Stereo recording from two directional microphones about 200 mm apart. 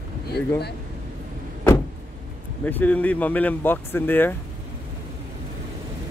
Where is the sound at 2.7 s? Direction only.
10° left (ahead or behind).